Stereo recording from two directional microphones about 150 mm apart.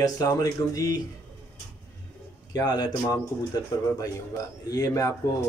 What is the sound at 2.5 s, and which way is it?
Speech, 25° left (ahead or behind).